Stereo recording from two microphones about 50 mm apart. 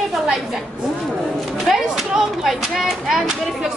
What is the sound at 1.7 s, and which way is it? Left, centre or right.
A woman's voice, centre.